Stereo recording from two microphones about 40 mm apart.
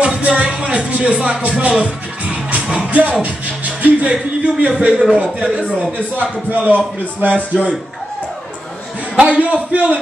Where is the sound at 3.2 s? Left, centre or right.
Right.